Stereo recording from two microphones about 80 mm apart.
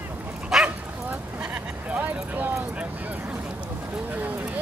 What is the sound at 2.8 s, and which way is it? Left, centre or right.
Dog, centre.